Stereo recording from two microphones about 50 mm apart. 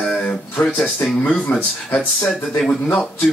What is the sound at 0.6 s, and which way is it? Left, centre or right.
Speech, left.